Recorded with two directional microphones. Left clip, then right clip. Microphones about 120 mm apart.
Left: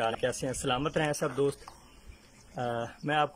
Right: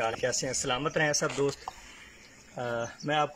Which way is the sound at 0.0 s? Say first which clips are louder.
Right 1 dB; centre (ahead or behind).